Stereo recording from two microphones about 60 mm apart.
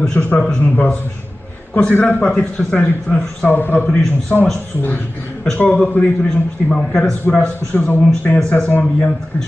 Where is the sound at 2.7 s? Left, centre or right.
Left.